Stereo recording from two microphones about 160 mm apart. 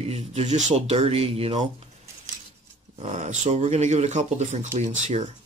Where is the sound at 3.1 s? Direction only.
50° right (ahead or behind).